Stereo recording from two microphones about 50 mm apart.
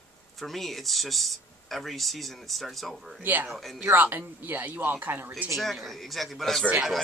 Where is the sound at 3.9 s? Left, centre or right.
Right.